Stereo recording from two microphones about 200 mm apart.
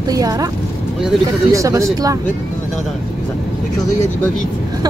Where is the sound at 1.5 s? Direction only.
15° right (ahead or behind).